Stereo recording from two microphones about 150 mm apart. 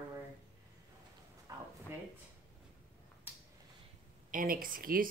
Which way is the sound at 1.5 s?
25° right (ahead or behind).